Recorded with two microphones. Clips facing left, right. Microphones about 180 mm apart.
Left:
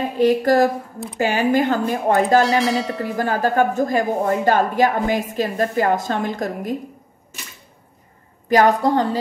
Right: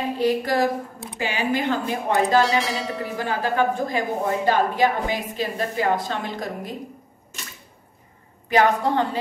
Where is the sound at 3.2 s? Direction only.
45° left (ahead or behind).